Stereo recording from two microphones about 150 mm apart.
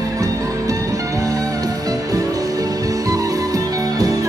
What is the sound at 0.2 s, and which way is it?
Music, 25° right (ahead or behind).